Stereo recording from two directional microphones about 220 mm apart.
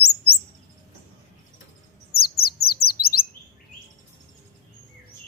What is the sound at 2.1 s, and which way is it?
Bird, 45° left (ahead or behind).